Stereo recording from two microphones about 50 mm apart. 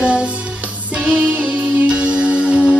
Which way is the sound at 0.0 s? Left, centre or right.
Right.